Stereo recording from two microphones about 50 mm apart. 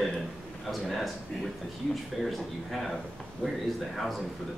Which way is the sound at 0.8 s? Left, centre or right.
Centre.